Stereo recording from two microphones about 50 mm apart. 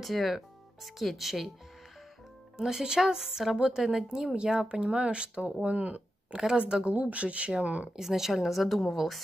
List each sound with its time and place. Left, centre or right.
0.0 s speech: centre
2.5 s speech: centre; by 7.9 s right
7.9 s speech: centre